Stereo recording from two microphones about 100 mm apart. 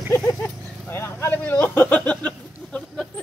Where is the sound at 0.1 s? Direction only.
30° left (ahead or behind).